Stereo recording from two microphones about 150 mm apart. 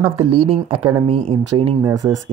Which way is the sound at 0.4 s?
35° right (ahead or behind).